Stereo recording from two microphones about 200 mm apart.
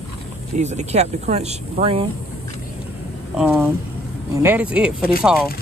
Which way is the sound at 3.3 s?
5° right (ahead or behind).